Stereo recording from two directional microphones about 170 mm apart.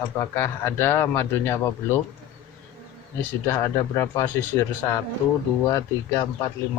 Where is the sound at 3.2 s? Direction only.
15° left (ahead or behind).